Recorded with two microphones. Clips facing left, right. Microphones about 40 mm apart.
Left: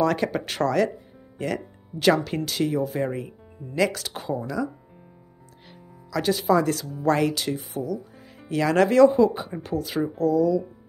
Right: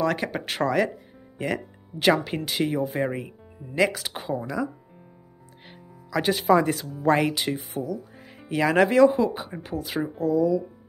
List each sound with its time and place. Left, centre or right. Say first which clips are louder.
0.0 s speech: left 3 dB; centre
5.7 s music: right 1 dB; right
6.3 s speech: right 1 dB; right
6.6 s speech: even; right